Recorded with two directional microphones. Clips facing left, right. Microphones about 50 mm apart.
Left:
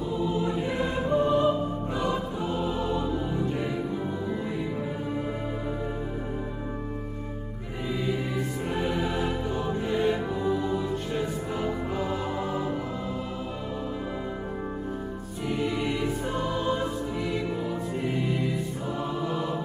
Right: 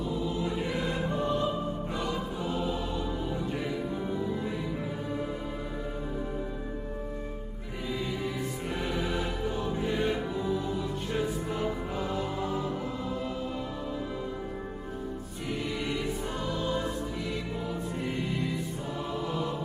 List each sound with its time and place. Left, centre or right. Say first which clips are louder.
0.7 s music: left 5 dB; centre
8.7 s music: left 4 dB; centre
15.6 s music: left 5 dB; centre
18.2 s music: left 4 dB; centre
19.2 s mantra: left 2 dB; centre